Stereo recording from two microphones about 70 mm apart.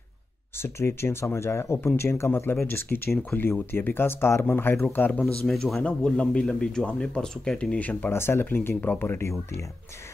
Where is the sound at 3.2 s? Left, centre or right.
Left.